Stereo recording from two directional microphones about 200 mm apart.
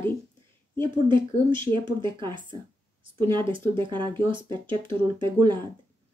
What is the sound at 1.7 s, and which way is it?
Speech, 25° right (ahead or behind).